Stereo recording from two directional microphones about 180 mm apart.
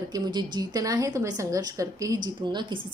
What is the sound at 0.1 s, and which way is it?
Speech, 20° right (ahead or behind).